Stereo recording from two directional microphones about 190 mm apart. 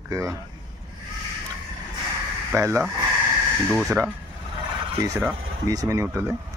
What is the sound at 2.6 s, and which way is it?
Speech, 15° right (ahead or behind).